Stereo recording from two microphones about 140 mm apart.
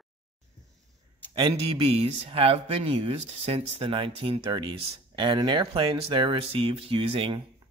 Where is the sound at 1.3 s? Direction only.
40° right (ahead or behind).